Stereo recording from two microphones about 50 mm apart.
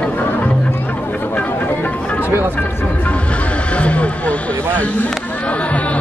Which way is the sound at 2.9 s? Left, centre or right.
Left.